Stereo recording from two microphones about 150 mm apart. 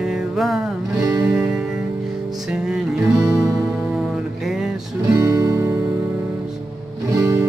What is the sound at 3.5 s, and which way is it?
Music, 10° right (ahead or behind).